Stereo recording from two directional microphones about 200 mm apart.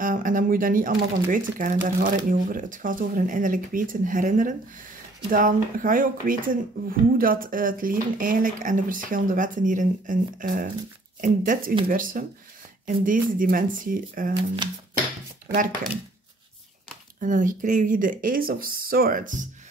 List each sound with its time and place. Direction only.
0.0 s speech: 40° right (ahead or behind)
14.3 s speech: 25° right (ahead or behind)
17.2 s speech: 40° right (ahead or behind)